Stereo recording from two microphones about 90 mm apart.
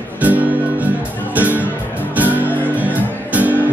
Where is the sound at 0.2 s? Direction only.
20° right (ahead or behind).